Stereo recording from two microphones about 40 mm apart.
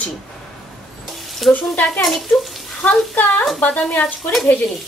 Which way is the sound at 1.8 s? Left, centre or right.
Centre.